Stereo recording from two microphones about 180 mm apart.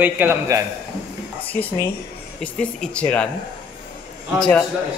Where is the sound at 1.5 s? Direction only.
10° left (ahead or behind).